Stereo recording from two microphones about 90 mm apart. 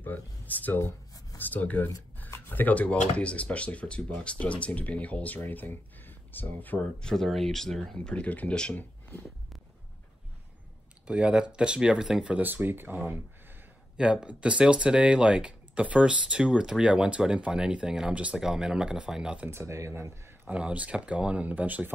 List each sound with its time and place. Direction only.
0.0 s speech: 20° left (ahead or behind)
7.1 s speech: 5° left (ahead or behind)
11.1 s speech: 10° right (ahead or behind)
19.5 s speech: 30° right (ahead or behind)
20.4 s speech: 10° right (ahead or behind)